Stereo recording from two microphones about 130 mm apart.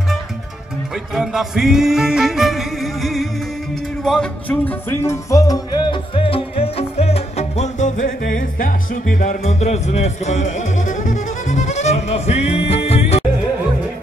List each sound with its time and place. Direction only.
1.1 s music: 5° right (ahead or behind); by 5.6 s 25° left (ahead or behind)
5.9 s music: 45° left (ahead or behind)